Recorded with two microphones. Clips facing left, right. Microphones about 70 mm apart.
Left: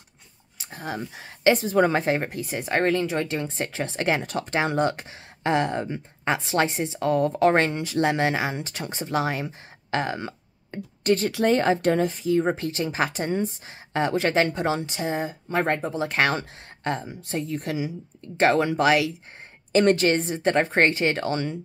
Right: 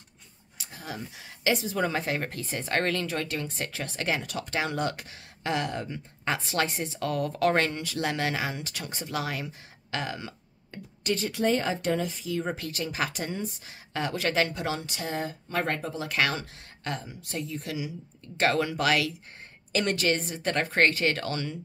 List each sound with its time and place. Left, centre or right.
0.6 s speech: left
2.2 s speech: centre; by 17.5 s left
17.5 s a woman's voice: left
18.4 s speech: left
19.7 s speech: left